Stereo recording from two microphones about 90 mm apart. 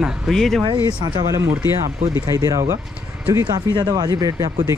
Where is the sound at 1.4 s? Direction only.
30° right (ahead or behind).